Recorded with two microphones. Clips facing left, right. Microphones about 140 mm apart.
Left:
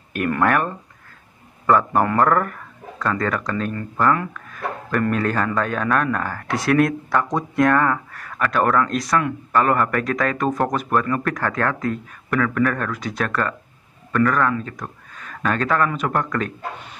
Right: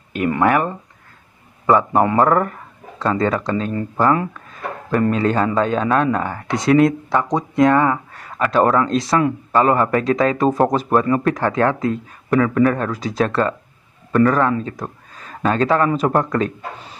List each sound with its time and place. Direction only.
0.1 s speech: 15° right (ahead or behind)